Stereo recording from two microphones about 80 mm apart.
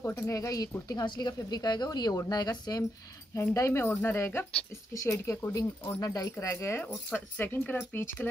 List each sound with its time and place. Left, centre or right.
0.0 s speech: left
1.0 s a woman's voice: left
3.3 s speech: left
6.4 s speech: left
7.1 s speech: left